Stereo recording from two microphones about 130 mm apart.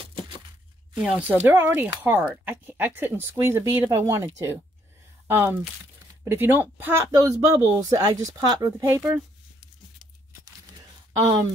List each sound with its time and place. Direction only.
0.9 s speech: 10° right (ahead or behind); by 4.6 s 25° right (ahead or behind)
6.2 s speech: 15° right (ahead or behind)
11.1 s speech: 30° right (ahead or behind)